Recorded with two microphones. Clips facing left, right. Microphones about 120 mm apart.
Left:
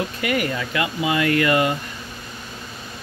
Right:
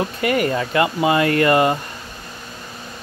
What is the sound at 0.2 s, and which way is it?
Speech, 35° right (ahead or behind).